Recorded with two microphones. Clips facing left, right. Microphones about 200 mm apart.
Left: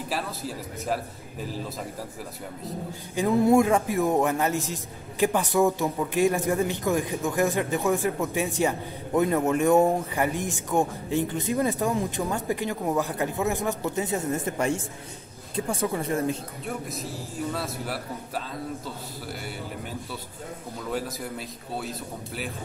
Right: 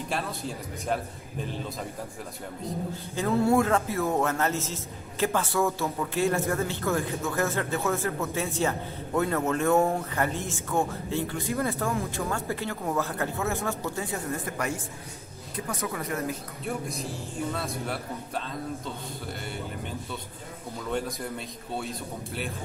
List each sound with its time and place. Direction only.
0.1 s a man's voice: 5° left (ahead or behind)
3.2 s speech: 15° left (ahead or behind)
16.6 s a man's voice: centre (ahead or behind)
20.9 s a man's voice: 5° left (ahead or behind)